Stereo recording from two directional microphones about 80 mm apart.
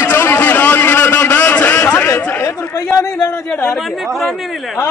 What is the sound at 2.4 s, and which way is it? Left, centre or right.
Chatter, left.